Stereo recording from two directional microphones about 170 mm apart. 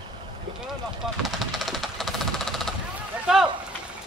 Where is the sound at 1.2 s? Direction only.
Centre (ahead or behind).